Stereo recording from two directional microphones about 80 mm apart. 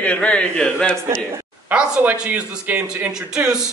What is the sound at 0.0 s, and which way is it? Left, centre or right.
Speech, centre.